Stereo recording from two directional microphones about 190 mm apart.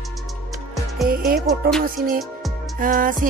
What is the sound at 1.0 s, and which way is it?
Speech, 50° right (ahead or behind).